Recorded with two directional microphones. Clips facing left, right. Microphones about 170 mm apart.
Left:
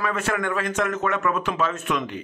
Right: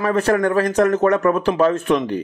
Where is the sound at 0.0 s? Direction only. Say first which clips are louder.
Right 8 dB; 35° right (ahead or behind).